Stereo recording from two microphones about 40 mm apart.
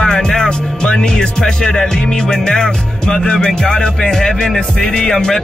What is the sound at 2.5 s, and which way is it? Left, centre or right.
Music, centre.